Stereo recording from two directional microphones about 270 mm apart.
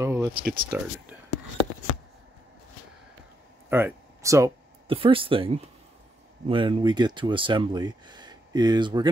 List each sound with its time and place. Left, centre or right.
0.0 s a sound: centre
0.4 s speech: right
3.6 s speech: centre